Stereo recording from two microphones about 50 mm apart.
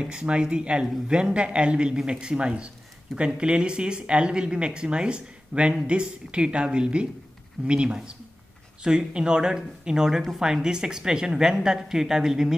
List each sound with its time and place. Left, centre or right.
0.0 s a woman's voice: centre